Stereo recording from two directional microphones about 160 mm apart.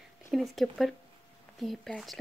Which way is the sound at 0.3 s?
Centre (ahead or behind).